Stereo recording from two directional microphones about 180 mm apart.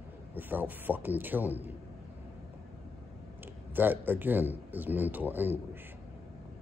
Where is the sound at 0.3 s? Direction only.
10° right (ahead or behind).